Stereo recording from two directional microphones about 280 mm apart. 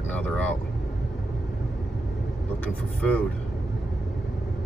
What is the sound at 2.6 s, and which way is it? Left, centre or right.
Speech, centre.